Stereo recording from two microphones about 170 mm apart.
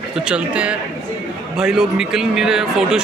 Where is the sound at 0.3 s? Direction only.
5° right (ahead or behind).